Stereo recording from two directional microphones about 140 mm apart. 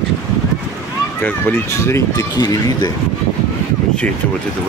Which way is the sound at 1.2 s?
20° left (ahead or behind).